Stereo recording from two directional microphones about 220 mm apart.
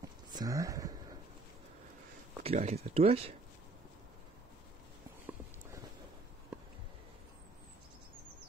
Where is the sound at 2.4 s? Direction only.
30° right (ahead or behind).